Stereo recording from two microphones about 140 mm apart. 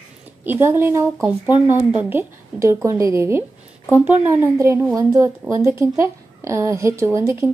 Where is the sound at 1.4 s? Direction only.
30° left (ahead or behind).